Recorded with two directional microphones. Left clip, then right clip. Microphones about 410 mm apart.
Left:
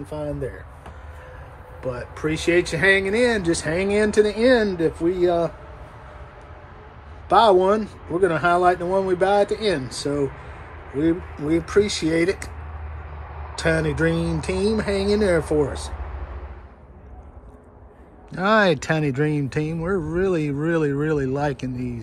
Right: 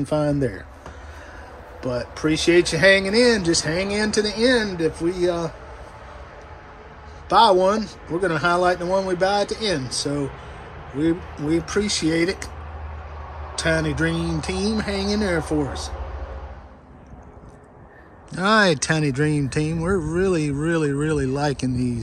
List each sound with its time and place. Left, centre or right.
0.0 s speech: centre
1.8 s speech: centre
7.2 s speech: centre
13.6 s speech: centre
18.3 s speech: centre